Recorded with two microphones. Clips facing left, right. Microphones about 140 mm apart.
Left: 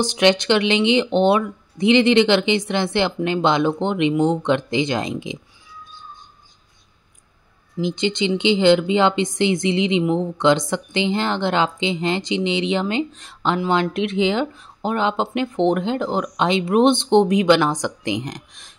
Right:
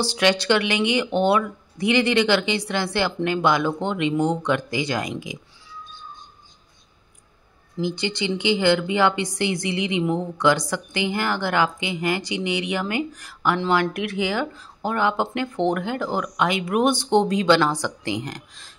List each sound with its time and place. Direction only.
0.0 s a woman's voice: 20° left (ahead or behind)
7.8 s a woman's voice: 20° left (ahead or behind)